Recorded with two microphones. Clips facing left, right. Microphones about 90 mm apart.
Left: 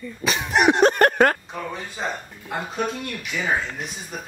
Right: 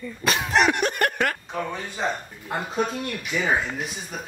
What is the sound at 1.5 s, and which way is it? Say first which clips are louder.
Speech: right 2 dB; centre (ahead or behind).